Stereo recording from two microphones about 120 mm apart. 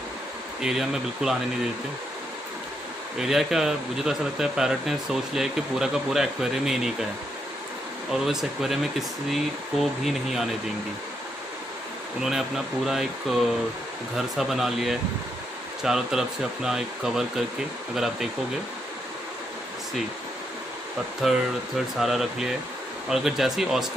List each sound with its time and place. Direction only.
0.6 s speech: 5° right (ahead or behind)
3.2 s speech: 5° right (ahead or behind)
8.1 s speech: 5° right (ahead or behind)
12.2 s speech: 5° right (ahead or behind)
21.2 s speech: centre (ahead or behind)